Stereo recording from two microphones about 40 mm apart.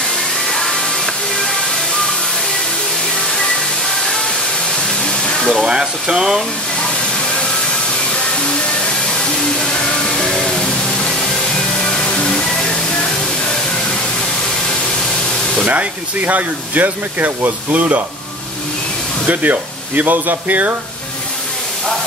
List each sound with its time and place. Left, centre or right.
0.5 s music: centre
3.9 s music: centre
5.0 s a sound: centre
5.7 s speech: right
9.2 s music: centre
11.8 s music: left
15.6 s speech: right
19.2 s speech: right